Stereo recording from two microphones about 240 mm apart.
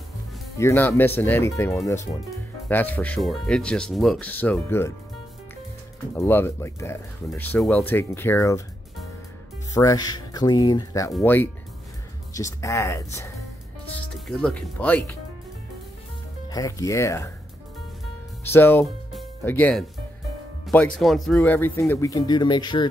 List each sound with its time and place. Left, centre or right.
0.6 s speech: centre
6.1 s speech: centre
9.8 s speech: centre
13.8 s speech: centre
16.4 s speech: centre
18.4 s speech: centre